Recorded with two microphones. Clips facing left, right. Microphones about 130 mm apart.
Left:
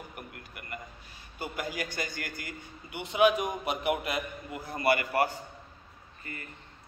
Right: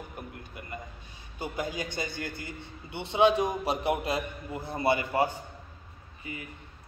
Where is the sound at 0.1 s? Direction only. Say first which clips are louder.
Right 3 dB; 20° right (ahead or behind).